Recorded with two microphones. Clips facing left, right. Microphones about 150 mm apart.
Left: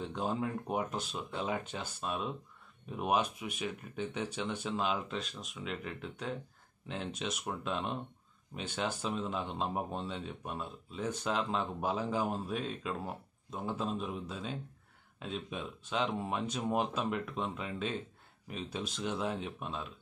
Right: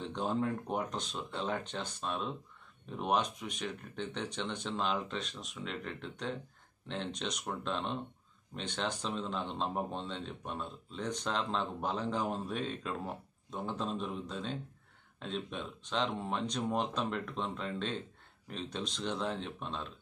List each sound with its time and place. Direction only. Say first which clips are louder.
0.0 s speech: right 1 dB; centre (ahead or behind)